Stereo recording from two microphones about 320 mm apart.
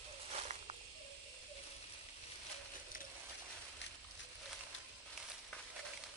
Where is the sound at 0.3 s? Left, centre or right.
Centre.